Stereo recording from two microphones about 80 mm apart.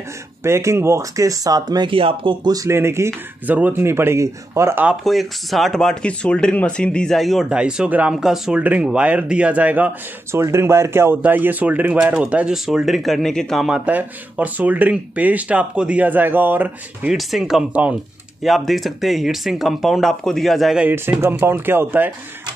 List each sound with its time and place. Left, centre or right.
0.4 s speech: right
1.9 s speech: right
2.7 s speech: right
3.4 s speech: centre
3.8 s speech: right
5.0 s speech: centre
7.4 s speech: centre
10.3 s speech: right; by 12.5 s centre
12.6 s speech: centre
13.7 s speech: centre
13.9 s speech: centre
17.1 s speech: centre
21.2 s speech: right